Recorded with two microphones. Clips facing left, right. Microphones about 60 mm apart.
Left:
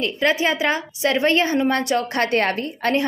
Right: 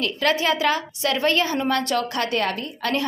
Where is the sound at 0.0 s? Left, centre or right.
Left.